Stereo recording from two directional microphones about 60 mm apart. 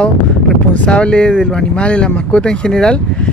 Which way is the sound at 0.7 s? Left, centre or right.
Centre.